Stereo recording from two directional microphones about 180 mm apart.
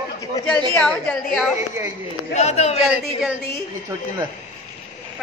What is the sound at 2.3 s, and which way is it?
Speech, 40° left (ahead or behind).